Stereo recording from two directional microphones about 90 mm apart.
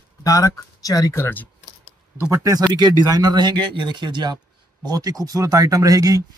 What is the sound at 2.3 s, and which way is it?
Speech, 40° right (ahead or behind).